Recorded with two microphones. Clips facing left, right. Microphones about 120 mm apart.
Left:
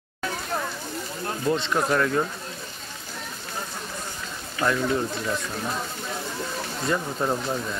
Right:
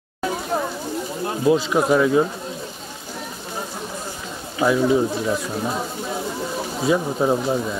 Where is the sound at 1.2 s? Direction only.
10° right (ahead or behind).